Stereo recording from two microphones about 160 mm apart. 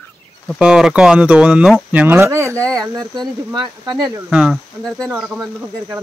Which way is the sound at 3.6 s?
25° right (ahead or behind).